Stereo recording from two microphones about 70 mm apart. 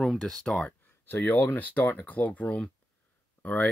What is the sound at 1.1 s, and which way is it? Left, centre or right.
Speech, left.